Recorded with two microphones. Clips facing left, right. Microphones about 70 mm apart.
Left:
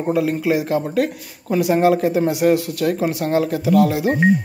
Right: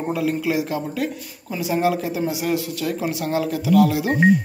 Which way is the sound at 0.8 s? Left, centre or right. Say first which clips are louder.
Left 5 dB; left.